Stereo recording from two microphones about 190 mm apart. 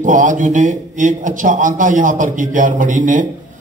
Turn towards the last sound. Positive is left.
turn(degrees=-45)  # may be behind; listen again after turning